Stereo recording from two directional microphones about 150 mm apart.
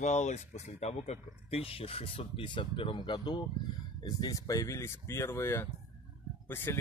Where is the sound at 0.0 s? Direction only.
50° left (ahead or behind).